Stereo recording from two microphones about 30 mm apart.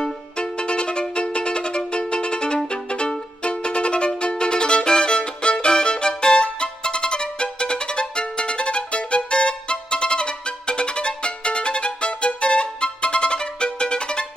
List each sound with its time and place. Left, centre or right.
0.4 s music: left